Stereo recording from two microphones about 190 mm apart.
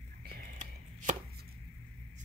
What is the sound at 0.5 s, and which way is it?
Chopping, 40° right (ahead or behind).